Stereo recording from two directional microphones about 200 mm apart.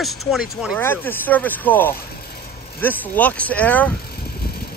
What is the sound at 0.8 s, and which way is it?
Speech, 10° left (ahead or behind).